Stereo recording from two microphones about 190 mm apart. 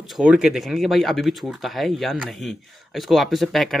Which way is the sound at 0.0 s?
5° right (ahead or behind).